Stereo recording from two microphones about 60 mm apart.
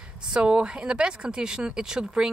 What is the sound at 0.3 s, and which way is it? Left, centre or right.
Speech, centre.